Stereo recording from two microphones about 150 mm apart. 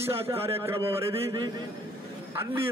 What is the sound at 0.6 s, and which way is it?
Speech, 20° right (ahead or behind).